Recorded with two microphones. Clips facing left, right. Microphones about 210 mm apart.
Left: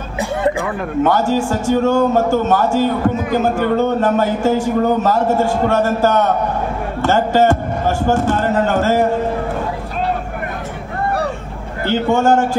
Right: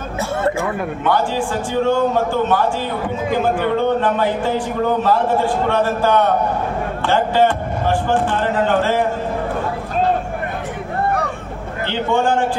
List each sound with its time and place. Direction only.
0.2 s a sound: 15° left (ahead or behind)
1.0 s a man's voice: 45° left (ahead or behind)
11.9 s a man's voice: 45° left (ahead or behind)